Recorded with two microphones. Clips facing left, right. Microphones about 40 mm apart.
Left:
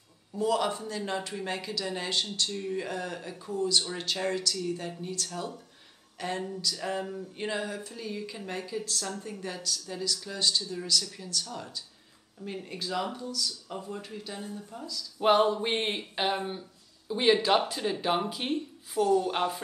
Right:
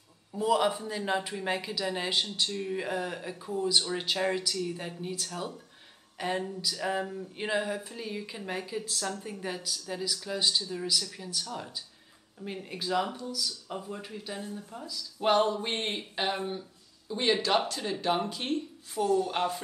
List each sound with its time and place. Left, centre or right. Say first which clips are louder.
0.3 s speech: right 1 dB; centre
15.1 s speech: left 2 dB; centre